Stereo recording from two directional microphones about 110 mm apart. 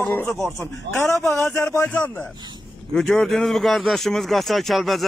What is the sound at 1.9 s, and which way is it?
Speech, 15° left (ahead or behind).